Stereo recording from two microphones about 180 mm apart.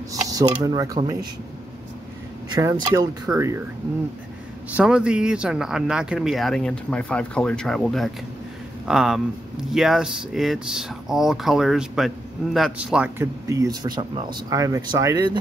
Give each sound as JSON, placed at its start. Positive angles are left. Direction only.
{"t": 0.1, "sound": "speech", "side_deg": -20}
{"t": 2.5, "sound": "speech", "side_deg": -20}
{"t": 4.7, "sound": "a man's voice", "side_deg": -5}